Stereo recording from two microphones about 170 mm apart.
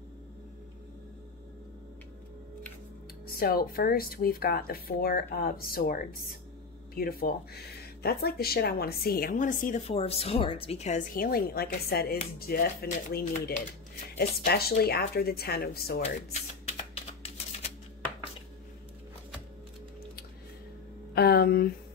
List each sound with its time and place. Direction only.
3.3 s speech: 60° left (ahead or behind)
9.9 s a woman's voice: 35° left (ahead or behind)
14.1 s a woman's voice: 75° left (ahead or behind)
16.9 s a sound: 35° left (ahead or behind)
21.1 s speech: 65° left (ahead or behind)